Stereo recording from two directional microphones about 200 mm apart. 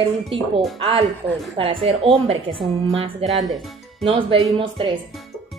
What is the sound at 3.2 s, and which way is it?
Speech, centre (ahead or behind).